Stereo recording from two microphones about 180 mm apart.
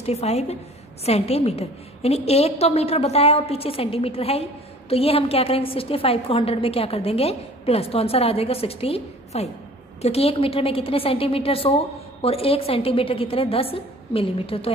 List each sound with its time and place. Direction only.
0.0 s a woman's voice: 35° left (ahead or behind)